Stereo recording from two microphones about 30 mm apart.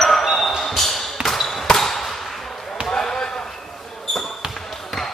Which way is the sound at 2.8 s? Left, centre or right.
Left.